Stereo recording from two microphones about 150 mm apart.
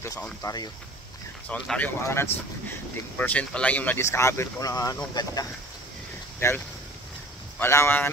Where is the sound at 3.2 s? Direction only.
10° left (ahead or behind); by 5.3 s 30° left (ahead or behind).